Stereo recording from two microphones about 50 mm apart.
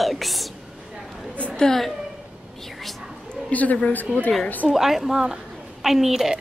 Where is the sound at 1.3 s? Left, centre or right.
Left.